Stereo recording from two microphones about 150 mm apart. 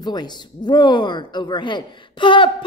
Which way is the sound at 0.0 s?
30° left (ahead or behind).